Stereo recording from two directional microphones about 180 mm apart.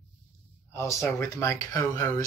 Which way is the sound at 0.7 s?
15° left (ahead or behind).